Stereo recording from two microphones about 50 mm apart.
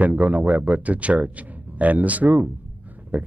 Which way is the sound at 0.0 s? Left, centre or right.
Right.